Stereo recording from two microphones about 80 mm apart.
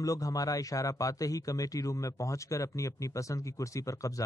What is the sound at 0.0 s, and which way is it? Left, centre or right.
A man's voice, left.